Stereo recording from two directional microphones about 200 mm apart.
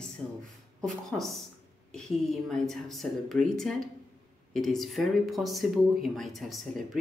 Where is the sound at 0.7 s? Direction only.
Centre (ahead or behind).